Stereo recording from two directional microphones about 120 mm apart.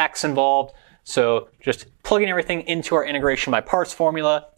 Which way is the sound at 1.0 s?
5° left (ahead or behind).